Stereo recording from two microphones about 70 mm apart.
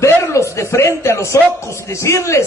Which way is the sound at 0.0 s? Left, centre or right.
Left.